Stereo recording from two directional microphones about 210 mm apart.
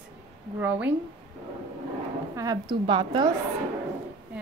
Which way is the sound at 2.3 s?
20° right (ahead or behind).